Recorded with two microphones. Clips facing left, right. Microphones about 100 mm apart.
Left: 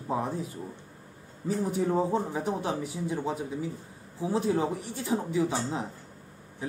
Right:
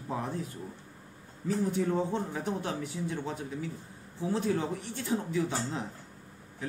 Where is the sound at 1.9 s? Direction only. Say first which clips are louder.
Left 4 dB; 35° left (ahead or behind).